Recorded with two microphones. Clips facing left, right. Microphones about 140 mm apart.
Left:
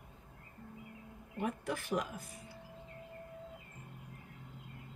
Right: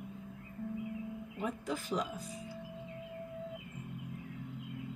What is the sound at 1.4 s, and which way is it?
Speech, 55° left (ahead or behind).